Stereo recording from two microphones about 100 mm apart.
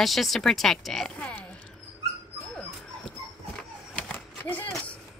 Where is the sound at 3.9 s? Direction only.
15° left (ahead or behind).